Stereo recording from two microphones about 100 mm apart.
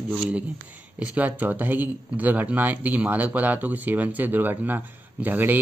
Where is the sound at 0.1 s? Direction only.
15° right (ahead or behind).